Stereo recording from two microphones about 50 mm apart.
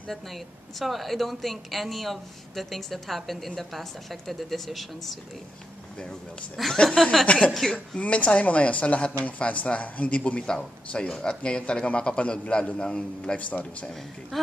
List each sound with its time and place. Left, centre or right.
0.1 s speech: centre
6.5 s speech: centre
6.8 s a man's voice: centre
7.2 s a man's voice: left
13.4 s speech: left
14.3 s speech: centre